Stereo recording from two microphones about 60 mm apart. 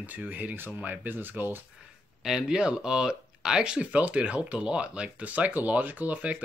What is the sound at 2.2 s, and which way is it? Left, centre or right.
Speech, centre.